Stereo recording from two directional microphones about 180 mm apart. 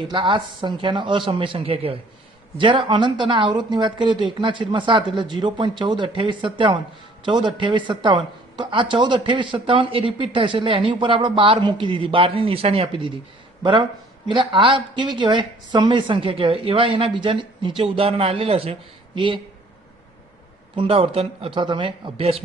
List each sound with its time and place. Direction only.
0.1 s speech: 25° right (ahead or behind)
20.7 s speech: 30° right (ahead or behind)